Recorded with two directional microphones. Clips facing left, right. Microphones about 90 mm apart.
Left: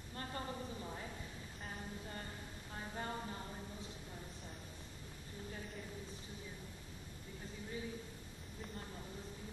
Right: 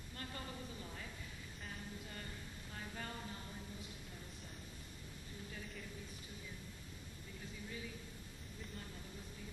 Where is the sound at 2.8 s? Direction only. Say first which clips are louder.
Left 4 dB; 30° left (ahead or behind).